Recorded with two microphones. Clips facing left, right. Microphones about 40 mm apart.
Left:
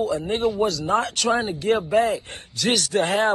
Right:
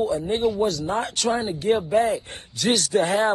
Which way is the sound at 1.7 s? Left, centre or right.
Left.